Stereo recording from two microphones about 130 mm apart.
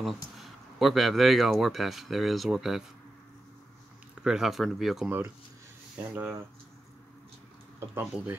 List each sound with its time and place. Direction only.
0.0 s speech: centre (ahead or behind)
4.2 s speech: 5° right (ahead or behind)
6.1 s speech: 15° right (ahead or behind)
7.9 s speech: 15° right (ahead or behind)